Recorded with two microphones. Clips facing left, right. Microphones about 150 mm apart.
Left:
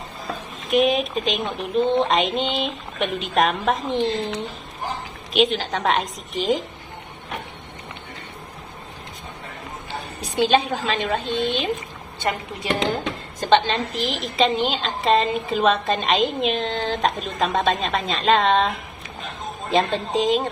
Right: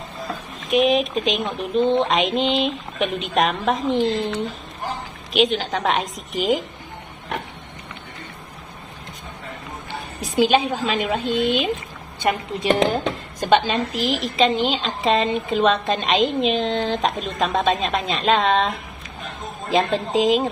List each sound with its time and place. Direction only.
0.7 s a woman's voice: centre (ahead or behind)
5.3 s a woman's voice: centre (ahead or behind)
10.3 s a woman's voice: 10° right (ahead or behind)
19.7 s a woman's voice: centre (ahead or behind)